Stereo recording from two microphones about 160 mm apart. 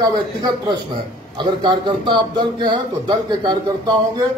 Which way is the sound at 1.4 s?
30° right (ahead or behind).